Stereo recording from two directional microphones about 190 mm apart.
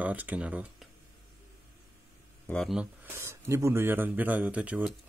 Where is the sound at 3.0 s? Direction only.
15° right (ahead or behind).